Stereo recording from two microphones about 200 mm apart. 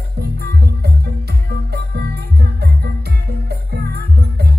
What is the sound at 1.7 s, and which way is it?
Music, 55° right (ahead or behind).